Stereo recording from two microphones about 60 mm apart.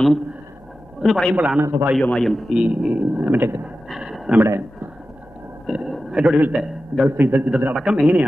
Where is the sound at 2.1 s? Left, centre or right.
Centre.